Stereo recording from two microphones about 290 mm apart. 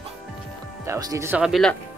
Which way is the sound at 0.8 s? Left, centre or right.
Centre.